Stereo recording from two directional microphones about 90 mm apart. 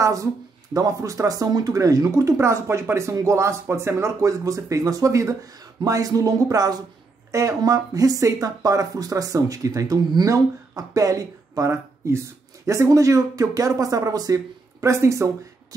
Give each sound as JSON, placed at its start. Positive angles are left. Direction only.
{"t": 0.0, "sound": "speech", "side_deg": -40}